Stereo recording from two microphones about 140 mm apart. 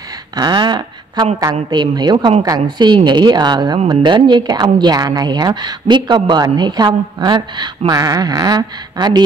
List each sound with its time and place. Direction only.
0.4 s a woman's voice: 30° right (ahead or behind)